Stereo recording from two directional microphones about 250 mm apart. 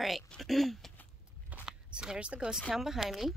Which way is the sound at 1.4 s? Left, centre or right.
Centre.